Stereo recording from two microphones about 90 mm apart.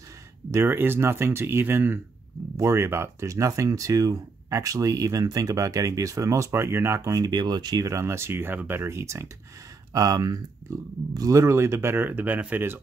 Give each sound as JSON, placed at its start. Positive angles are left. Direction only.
{"t": 0.5, "sound": "speech", "side_deg": -30}
{"t": 7.2, "sound": "speech", "side_deg": -50}
{"t": 7.8, "sound": "speech", "side_deg": -35}
{"t": 9.9, "sound": "speech", "side_deg": -45}